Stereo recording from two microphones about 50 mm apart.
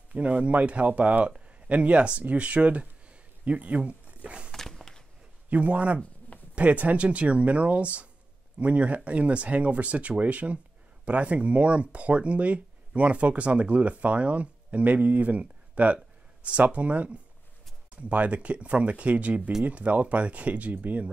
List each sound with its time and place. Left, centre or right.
0.1 s speech: right
4.5 s walk: centre
5.5 s speech: right